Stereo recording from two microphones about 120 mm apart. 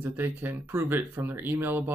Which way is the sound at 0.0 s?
20° right (ahead or behind).